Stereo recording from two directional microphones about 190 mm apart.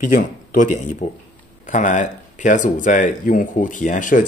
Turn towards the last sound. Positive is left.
turn(degrees=45)  # may be behind; listen again after turning